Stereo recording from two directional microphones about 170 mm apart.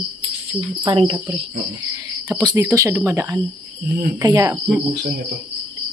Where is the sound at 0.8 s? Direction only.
25° right (ahead or behind).